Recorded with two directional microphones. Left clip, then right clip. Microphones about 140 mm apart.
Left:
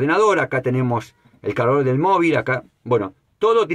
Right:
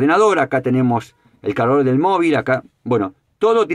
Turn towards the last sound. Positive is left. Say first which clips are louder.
# right 2 dB
turn(degrees=-30)  # may be behind; listen again after turning